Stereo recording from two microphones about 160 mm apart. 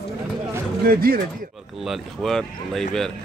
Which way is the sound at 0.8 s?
65° right (ahead or behind).